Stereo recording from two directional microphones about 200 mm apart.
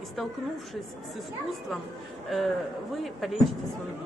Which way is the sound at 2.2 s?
Centre (ahead or behind).